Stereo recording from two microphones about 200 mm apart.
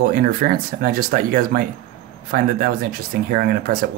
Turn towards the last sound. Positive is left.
turn(degrees=-45)  # may be behind; listen again after turning